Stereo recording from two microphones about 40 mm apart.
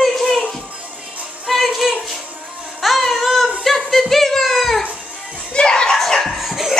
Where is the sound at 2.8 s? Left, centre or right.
Centre.